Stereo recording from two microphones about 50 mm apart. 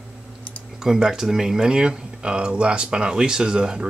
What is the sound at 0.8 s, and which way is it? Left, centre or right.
Speech, centre.